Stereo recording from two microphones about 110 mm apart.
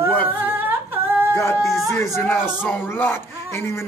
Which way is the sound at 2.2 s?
20° left (ahead or behind).